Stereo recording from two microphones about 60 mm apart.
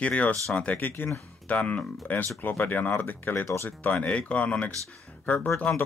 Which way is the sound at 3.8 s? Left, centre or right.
Left.